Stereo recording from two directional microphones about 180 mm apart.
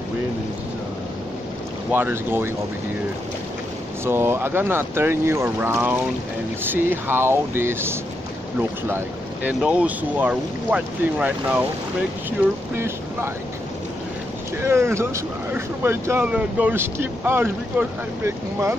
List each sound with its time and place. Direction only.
1.9 s speech: 10° right (ahead or behind)
4.0 s speech: 15° right (ahead or behind)
14.6 s speech: 15° right (ahead or behind)